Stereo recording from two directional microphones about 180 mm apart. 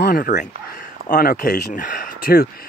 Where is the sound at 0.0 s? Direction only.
50° left (ahead or behind).